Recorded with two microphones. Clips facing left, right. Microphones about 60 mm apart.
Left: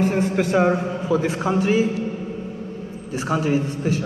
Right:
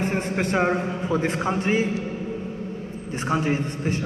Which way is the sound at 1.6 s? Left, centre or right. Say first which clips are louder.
Left 5 dB; right.